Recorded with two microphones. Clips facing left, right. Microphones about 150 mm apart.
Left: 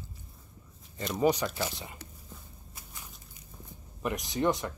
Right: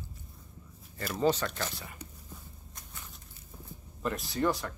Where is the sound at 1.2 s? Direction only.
15° left (ahead or behind).